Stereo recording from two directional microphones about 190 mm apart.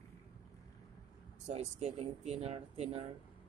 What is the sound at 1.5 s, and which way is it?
Speech, 35° right (ahead or behind).